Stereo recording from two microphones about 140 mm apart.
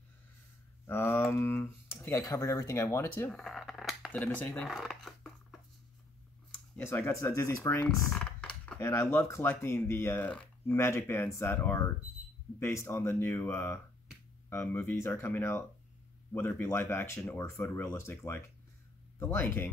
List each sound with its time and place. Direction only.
0.8 s speech: 20° left (ahead or behind)
3.3 s cutlery: centre (ahead or behind)
4.1 s speech: 10° left (ahead or behind)
4.6 s a sound: centre (ahead or behind)
6.8 s speech: 20° left (ahead or behind)
8.1 s typing: 10° left (ahead or behind)
8.7 s speech: 20° left (ahead or behind)